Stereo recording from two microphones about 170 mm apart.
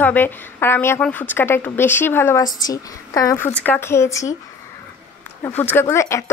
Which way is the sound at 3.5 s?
10° left (ahead or behind).